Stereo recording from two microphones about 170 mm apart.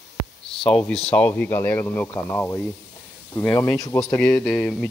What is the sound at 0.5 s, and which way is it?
Speech, 5° left (ahead or behind).